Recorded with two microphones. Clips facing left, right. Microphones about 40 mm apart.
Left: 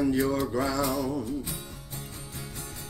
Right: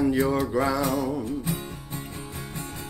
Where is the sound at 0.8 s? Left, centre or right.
Right.